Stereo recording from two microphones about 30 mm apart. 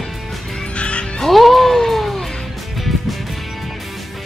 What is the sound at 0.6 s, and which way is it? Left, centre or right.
Music, left.